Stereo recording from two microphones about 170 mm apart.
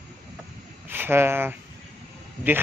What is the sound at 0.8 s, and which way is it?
Speech, 10° right (ahead or behind).